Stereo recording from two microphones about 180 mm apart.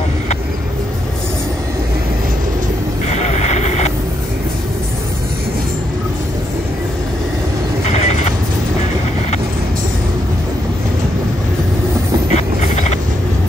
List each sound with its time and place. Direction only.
3.1 s vehicle: 40° left (ahead or behind)
7.8 s vehicle: 40° left (ahead or behind)
12.3 s vehicle: 40° left (ahead or behind)